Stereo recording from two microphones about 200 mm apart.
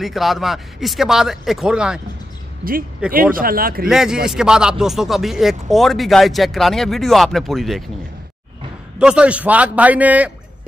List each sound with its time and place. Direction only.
0.0 s speech: centre (ahead or behind)
3.1 s speech: 45° right (ahead or behind)
3.9 s speech: centre (ahead or behind)
8.9 s a man's voice: 5° right (ahead or behind)